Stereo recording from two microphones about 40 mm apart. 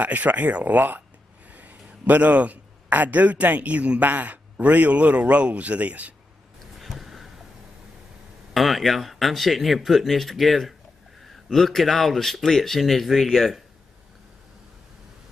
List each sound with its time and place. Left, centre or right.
0.0 s a man's voice: right
6.8 s a sound: centre
8.5 s speech: centre